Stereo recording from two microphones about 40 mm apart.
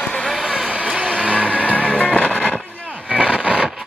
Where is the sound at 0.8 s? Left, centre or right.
Right.